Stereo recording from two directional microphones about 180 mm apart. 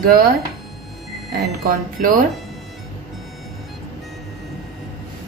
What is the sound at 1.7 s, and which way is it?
Speech, 50° right (ahead or behind).